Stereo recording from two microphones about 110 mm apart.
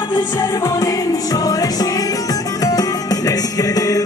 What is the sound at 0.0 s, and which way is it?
Music, 45° left (ahead or behind).